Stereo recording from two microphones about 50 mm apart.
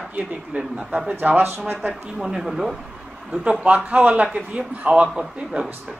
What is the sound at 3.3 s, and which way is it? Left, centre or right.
Speech, right.